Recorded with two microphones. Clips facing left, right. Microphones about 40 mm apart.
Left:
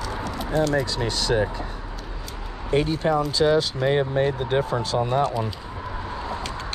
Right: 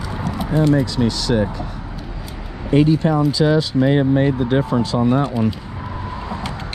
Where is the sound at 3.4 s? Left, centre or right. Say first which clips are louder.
Right 3 dB; right.